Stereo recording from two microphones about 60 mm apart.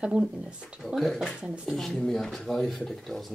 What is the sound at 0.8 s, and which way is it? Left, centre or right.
Speech, centre.